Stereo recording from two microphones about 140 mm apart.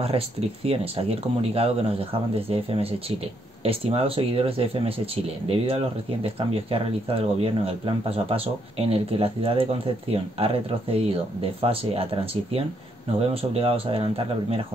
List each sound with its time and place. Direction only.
0.7 s speech: 45° right (ahead or behind)